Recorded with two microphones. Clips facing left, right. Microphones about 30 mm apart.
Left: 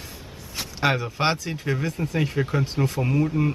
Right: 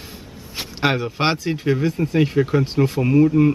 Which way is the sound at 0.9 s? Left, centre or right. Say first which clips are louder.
Right 3 dB; centre.